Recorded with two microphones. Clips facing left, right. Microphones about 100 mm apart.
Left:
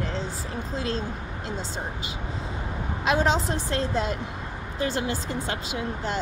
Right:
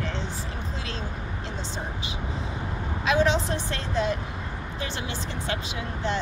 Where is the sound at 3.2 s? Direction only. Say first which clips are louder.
Right 3 dB; 35° left (ahead or behind).